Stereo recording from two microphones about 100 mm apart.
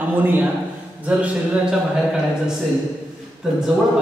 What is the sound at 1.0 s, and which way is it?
Speech, 10° right (ahead or behind).